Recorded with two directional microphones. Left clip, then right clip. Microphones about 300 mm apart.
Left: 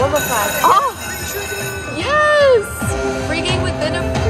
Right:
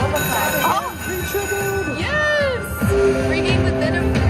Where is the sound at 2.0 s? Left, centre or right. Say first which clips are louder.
Left 8 dB; left.